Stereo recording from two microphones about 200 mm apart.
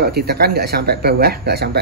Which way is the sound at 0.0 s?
50° right (ahead or behind).